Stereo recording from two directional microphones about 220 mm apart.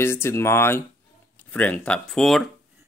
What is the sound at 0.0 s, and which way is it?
Speech, 10° left (ahead or behind).